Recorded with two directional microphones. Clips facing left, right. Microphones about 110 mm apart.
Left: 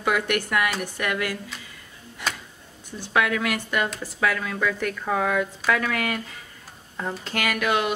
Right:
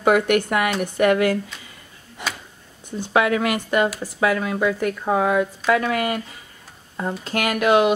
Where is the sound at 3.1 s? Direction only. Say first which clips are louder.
Right 4 dB; 30° right (ahead or behind).